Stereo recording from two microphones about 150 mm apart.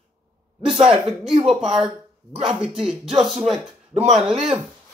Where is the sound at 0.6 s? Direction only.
35° right (ahead or behind).